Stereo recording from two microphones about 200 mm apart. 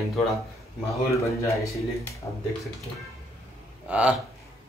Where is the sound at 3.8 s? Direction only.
5° right (ahead or behind).